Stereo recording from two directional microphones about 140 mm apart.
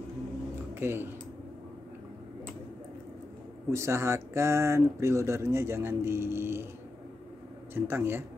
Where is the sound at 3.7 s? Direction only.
20° right (ahead or behind).